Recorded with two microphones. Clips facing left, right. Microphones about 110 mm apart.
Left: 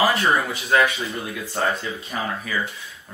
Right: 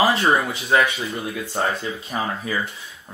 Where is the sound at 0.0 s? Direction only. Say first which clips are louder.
Right 1 dB; 25° right (ahead or behind).